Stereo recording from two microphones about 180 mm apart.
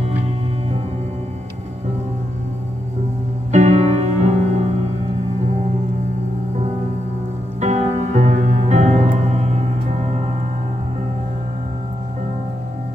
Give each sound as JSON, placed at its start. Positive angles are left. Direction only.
{"t": 3.5, "sound": "music", "side_deg": -40}
{"t": 7.6, "sound": "music", "side_deg": -40}